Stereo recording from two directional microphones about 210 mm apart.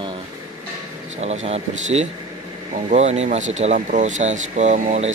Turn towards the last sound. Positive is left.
turn(degrees=-35)  # may be behind; listen again after turning